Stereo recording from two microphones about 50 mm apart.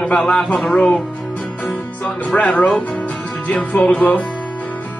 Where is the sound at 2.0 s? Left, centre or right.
Left.